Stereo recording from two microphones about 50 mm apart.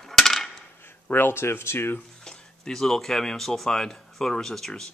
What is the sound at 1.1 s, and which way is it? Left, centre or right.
Speech, left.